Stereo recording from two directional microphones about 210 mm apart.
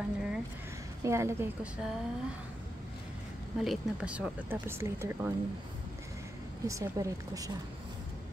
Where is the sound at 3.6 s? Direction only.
Centre (ahead or behind).